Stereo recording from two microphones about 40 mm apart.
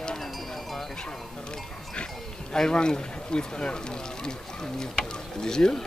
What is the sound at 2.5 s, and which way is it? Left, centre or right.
Speech, left.